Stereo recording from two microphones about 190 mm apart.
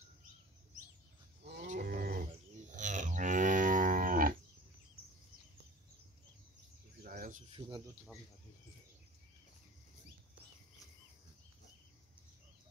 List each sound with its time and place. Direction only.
1.7 s livestock: 50° right (ahead or behind)
2.7 s livestock: 40° right (ahead or behind)
7.0 s bird: 45° right (ahead or behind)
7.5 s a sound: 25° right (ahead or behind)